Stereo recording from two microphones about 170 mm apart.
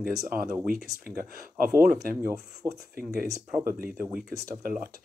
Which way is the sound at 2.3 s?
20° right (ahead or behind).